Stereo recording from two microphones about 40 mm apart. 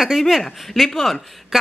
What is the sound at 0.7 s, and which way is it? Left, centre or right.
Speech, centre.